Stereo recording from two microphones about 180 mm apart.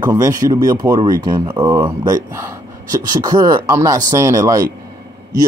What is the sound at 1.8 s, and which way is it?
Speech, 25° right (ahead or behind).